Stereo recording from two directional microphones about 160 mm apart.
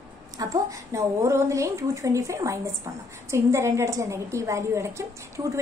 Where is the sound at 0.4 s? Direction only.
20° right (ahead or behind).